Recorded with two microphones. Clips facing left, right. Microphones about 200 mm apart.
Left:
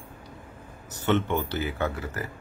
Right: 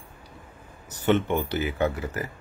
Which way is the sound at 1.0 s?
15° right (ahead or behind).